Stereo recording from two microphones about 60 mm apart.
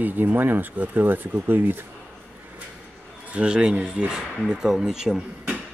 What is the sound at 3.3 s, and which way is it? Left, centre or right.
Speech, centre.